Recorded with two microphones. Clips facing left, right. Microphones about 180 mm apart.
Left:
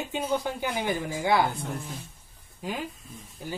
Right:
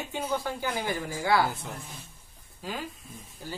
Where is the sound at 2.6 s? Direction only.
20° left (ahead or behind).